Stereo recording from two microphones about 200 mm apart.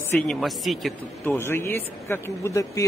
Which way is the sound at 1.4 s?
10° left (ahead or behind).